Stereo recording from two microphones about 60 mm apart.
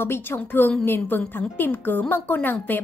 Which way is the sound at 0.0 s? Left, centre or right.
Left.